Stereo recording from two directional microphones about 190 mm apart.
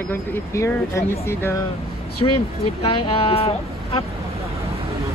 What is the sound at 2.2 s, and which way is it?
Speech, 25° left (ahead or behind).